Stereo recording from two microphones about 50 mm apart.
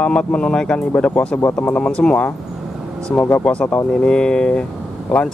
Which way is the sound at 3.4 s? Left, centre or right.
Left.